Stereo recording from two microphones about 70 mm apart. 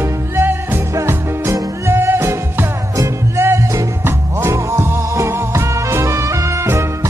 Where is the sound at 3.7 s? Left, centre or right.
Right.